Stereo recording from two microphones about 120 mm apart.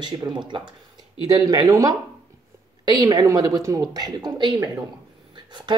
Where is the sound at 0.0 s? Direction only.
35° right (ahead or behind).